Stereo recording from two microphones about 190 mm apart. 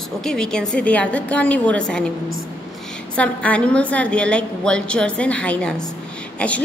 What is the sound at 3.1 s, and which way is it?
A woman's voice, 5° left (ahead or behind).